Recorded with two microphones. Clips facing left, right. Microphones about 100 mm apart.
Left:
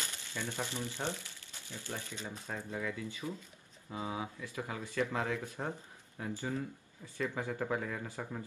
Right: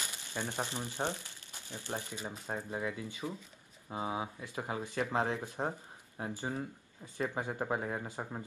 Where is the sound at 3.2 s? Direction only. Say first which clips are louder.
Right 2 dB; 15° right (ahead or behind).